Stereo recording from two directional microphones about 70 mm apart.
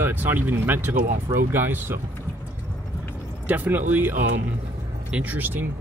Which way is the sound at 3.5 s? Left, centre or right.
Right.